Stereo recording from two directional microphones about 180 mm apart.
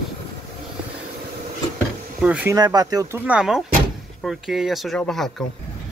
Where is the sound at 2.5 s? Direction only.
20° right (ahead or behind).